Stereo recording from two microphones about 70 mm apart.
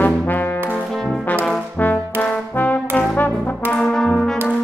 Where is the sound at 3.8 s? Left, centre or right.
Centre.